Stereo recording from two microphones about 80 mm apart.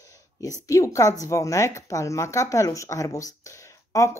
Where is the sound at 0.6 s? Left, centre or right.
Left.